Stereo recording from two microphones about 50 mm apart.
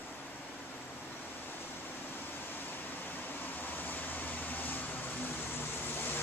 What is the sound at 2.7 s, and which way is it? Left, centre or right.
Air conditioning, left.